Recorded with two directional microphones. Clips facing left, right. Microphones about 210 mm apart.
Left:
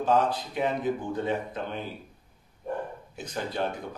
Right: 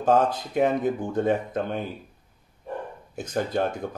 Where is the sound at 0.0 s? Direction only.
45° right (ahead or behind).